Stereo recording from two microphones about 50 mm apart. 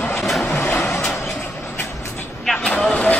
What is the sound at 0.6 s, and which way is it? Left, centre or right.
Vehicle, left.